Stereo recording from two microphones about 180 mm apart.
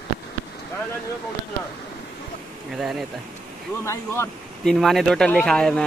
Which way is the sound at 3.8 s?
15° left (ahead or behind).